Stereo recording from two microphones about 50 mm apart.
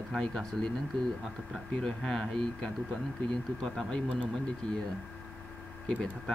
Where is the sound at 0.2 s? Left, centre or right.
Centre.